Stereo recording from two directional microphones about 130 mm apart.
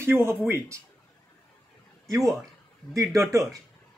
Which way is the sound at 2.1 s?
25° right (ahead or behind).